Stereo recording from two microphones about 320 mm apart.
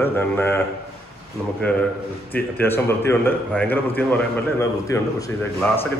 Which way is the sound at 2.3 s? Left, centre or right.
Centre.